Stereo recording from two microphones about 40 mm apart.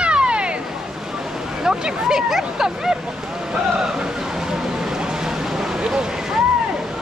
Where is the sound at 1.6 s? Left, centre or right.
Centre.